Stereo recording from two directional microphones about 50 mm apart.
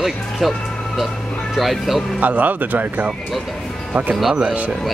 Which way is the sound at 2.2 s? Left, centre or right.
Right.